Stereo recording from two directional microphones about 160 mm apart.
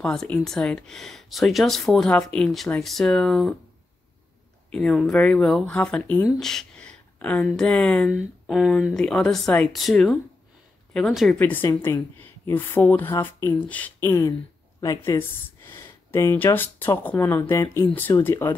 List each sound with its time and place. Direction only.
0.0 s speech: 5° left (ahead or behind)
4.7 s speech: centre (ahead or behind)